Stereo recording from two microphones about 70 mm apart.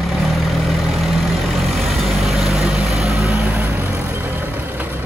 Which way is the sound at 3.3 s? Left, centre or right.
Right.